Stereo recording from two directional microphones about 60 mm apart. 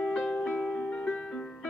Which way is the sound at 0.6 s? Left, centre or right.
Centre.